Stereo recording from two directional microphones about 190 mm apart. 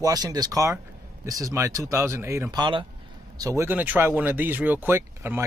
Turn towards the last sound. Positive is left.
turn(degrees=-10)  # may be behind; listen again after turning